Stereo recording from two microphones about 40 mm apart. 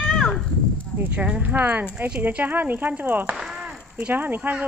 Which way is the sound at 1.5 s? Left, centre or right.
Right.